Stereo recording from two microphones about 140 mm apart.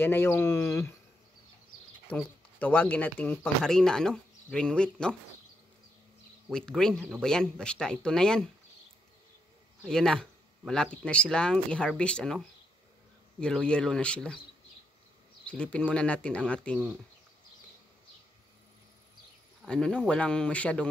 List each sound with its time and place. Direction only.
0.0 s speech: 15° left (ahead or behind)
2.0 s speech: 10° left (ahead or behind)
6.5 s speech: 5° left (ahead or behind)
9.8 s speech: 5° left (ahead or behind)
15.4 s speech: 10° left (ahead or behind)
19.6 s speech: 5° left (ahead or behind)